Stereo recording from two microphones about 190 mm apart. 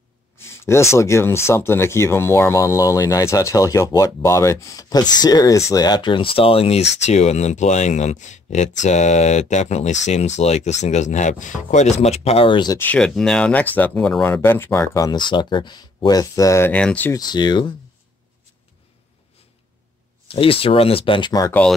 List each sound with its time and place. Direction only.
0.4 s speech: 15° left (ahead or behind)
12.7 s speech: 5° left (ahead or behind)
17.3 s speech: 20° left (ahead or behind)
20.2 s speech: 30° left (ahead or behind)